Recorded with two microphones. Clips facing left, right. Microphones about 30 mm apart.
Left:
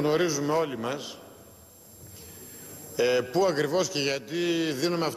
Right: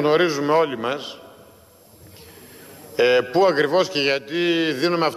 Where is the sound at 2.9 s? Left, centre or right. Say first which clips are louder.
Right 7 dB; right.